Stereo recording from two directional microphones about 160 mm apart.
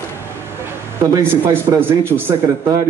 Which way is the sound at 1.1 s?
15° right (ahead or behind).